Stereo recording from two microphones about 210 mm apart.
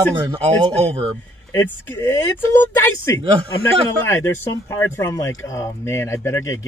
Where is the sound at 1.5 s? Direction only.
10° left (ahead or behind).